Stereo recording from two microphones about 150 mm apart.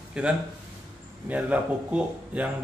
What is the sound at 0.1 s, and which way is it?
Speech, 5° right (ahead or behind).